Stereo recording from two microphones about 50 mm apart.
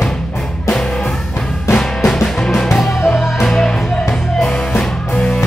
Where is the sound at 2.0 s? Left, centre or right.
Centre.